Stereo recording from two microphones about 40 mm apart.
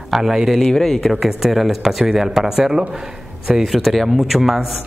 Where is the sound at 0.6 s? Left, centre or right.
Centre.